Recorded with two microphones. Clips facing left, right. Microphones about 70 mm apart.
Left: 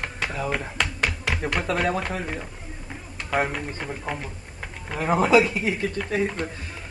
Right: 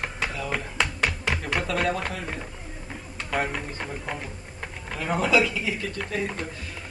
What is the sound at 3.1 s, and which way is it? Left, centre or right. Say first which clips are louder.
A woman's voice: left 3 dB; centre.